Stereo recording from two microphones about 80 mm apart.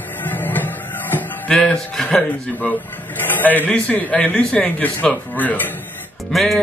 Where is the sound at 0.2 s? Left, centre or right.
Left.